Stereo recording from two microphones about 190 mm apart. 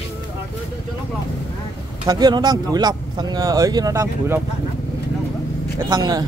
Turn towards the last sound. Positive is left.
turn(degrees=-20)  # may be behind; listen again after turning